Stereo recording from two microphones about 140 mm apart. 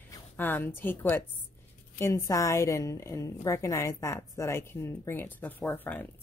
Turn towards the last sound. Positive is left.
turn(degrees=10)  # may be behind; listen again after turning